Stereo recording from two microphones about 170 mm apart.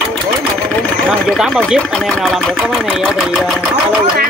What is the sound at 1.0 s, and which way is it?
Speech, centre (ahead or behind).